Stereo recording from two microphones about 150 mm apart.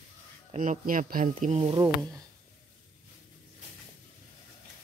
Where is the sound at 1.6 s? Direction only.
25° right (ahead or behind).